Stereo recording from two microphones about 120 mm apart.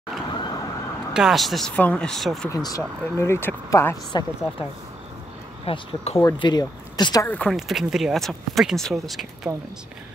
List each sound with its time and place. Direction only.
0.3 s emergency vehicle: 40° left (ahead or behind)
1.1 s speech: centre (ahead or behind)
2.5 s speech: 30° left (ahead or behind)
4.1 s speech: 40° left (ahead or behind)
5.7 s speech: 55° left (ahead or behind)
6.4 s speech: 35° left (ahead or behind)
7.2 s speech: 10° left (ahead or behind)
7.5 s speech: centre (ahead or behind)